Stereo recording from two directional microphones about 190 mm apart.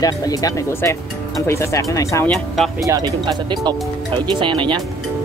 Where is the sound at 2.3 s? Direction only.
Centre (ahead or behind).